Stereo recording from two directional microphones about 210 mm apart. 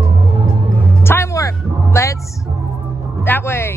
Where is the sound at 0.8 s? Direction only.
10° left (ahead or behind).